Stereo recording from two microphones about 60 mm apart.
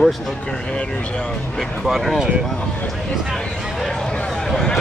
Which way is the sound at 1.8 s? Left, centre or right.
Centre.